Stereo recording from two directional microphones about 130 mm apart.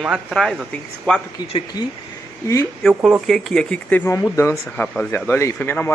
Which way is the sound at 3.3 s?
5° left (ahead or behind).